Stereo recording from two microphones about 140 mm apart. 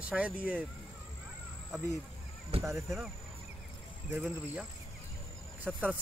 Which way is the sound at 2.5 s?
45° right (ahead or behind).